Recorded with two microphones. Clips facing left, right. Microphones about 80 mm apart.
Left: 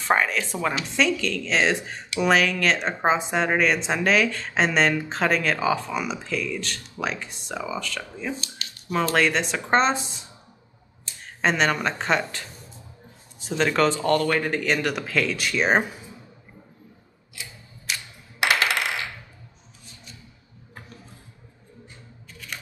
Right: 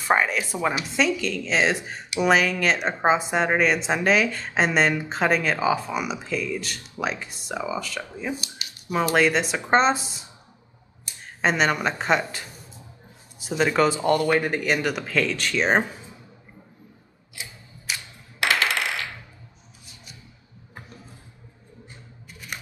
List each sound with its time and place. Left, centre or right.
0.1 s a woman's voice: centre
9.1 s a woman's voice: centre
11.1 s a sound: centre
11.4 s speech: centre
17.4 s tick-tock: right